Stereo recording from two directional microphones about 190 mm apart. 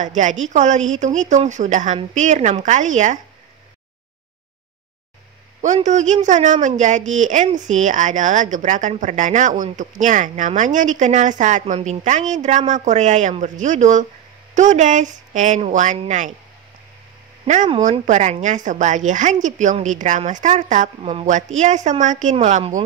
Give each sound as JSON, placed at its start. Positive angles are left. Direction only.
{"t": 0.0, "sound": "speech", "side_deg": -40}
{"t": 5.9, "sound": "speech", "side_deg": -40}
{"t": 18.0, "sound": "speech", "side_deg": -40}